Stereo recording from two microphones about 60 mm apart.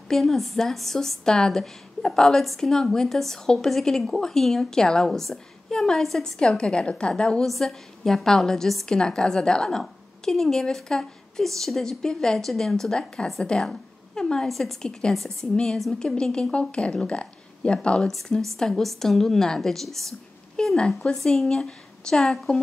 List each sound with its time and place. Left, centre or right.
0.1 s a woman's voice: centre